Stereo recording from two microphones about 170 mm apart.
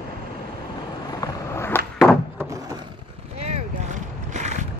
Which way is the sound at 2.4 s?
20° right (ahead or behind).